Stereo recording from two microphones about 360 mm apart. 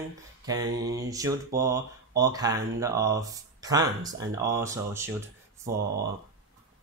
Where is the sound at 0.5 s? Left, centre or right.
Centre.